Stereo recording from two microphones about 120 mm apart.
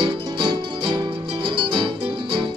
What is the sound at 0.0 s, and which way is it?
Music, 40° right (ahead or behind).